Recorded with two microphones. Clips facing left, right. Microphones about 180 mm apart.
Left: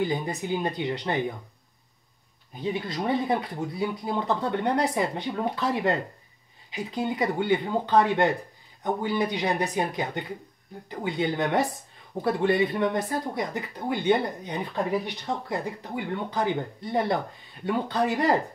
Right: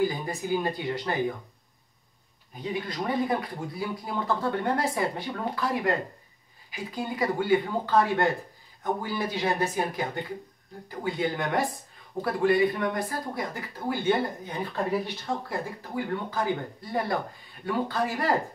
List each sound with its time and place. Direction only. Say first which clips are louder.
0.0 s speech: even; 20° left (ahead or behind)
3.1 s speech: left 2 dB; 20° left (ahead or behind)